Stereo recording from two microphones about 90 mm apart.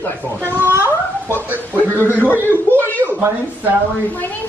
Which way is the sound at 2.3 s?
20° left (ahead or behind).